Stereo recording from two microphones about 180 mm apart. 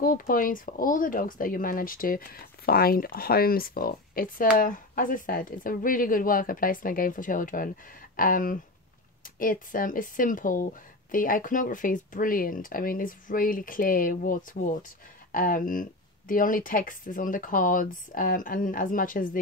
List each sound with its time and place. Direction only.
0.0 s speech: 50° left (ahead or behind)